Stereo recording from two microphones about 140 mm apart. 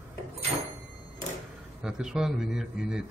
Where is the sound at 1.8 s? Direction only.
5° right (ahead or behind).